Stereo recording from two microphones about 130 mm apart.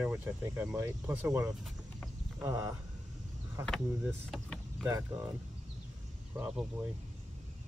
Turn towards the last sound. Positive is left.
turn(degrees=-15)  # may be behind; listen again after turning